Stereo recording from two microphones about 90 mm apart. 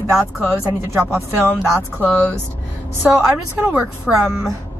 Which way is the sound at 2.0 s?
15° left (ahead or behind).